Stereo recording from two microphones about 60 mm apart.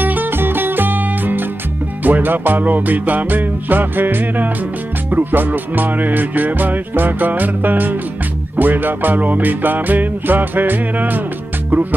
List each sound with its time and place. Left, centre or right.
0.0 s music: right